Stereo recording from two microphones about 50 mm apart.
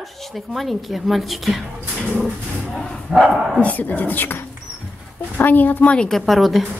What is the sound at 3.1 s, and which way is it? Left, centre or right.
Speech, centre.